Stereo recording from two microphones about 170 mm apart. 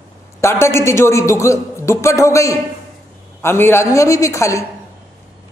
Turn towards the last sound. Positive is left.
turn(degrees=15)  # may be behind; listen again after turning